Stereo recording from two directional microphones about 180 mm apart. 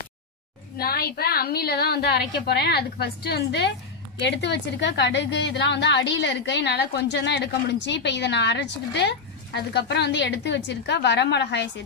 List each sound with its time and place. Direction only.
0.7 s a woman's voice: 60° left (ahead or behind)